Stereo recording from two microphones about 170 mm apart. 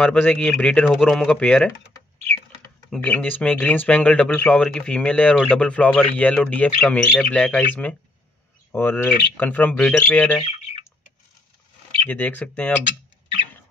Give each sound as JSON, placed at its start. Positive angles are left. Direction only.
{"t": 0.0, "sound": "speech", "side_deg": 5}
{"t": 2.9, "sound": "speech", "side_deg": 10}
{"t": 10.4, "sound": "speech", "side_deg": 35}
{"t": 12.1, "sound": "speech", "side_deg": 10}